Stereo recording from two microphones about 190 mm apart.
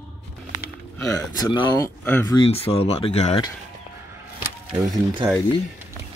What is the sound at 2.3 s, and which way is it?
Speech, 30° left (ahead or behind).